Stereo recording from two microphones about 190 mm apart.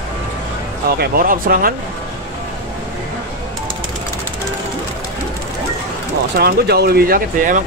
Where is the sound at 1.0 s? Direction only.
50° right (ahead or behind).